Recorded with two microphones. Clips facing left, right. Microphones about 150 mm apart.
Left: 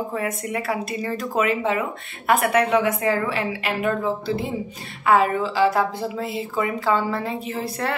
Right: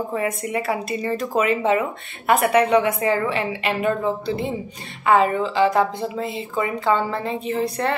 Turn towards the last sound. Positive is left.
turn(degrees=0)  # may be behind; listen again after turning